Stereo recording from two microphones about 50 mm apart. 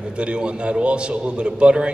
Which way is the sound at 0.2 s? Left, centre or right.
Right.